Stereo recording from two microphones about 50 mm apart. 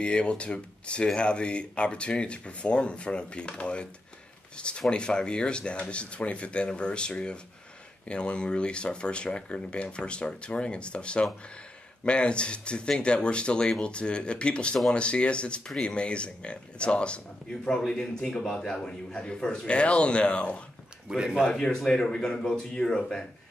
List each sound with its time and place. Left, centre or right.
0.0 s speech: left
21.2 s speech: centre
21.5 s speech: centre